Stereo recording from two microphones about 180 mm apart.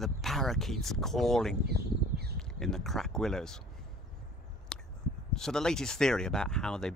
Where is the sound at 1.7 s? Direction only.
60° right (ahead or behind).